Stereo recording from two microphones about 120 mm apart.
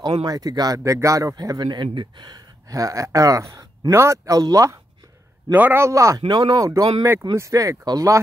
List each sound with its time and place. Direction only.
0.2 s a man's voice: 35° right (ahead or behind)
5.5 s a man's voice: 15° right (ahead or behind)